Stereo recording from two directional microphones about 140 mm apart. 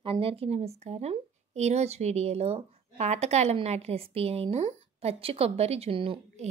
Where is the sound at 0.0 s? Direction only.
40° right (ahead or behind).